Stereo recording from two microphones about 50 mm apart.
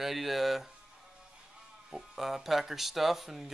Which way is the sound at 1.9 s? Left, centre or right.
Centre.